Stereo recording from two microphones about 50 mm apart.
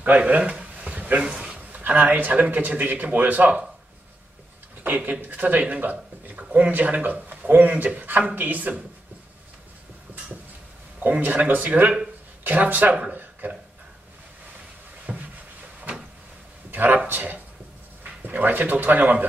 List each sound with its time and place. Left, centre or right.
0.2 s a man's voice: right
1.2 s a sound: right
1.8 s speech: right
4.8 s speech: right
11.0 s speech: right
15.1 s a sound: right
16.7 s speech: right